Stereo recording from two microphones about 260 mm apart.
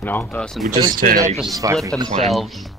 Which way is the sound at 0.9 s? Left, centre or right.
Right.